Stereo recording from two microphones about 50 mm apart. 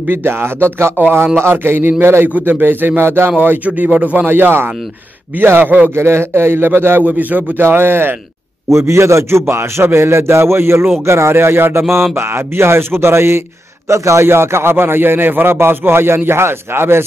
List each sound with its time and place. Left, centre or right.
0.1 s a man's voice: right
3.0 s a man's voice: right
3.6 s speech: right
4.3 s a man's voice: right
5.9 s speech: right
7.0 s speech: right
7.6 s a man's voice: right
8.6 s a man's voice: right
13.8 s speech: right
14.2 s a man's voice: right